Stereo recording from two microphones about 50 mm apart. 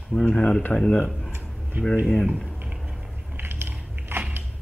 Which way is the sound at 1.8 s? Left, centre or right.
Right.